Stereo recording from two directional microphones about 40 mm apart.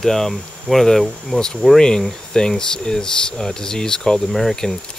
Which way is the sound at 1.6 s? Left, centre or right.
Left.